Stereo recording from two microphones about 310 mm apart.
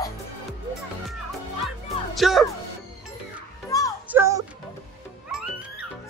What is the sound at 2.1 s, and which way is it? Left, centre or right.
Speech, centre.